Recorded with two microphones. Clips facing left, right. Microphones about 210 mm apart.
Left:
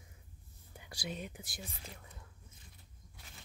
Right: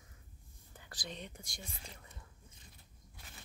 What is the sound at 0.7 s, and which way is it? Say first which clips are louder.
Speech: left 4 dB; 10° left (ahead or behind).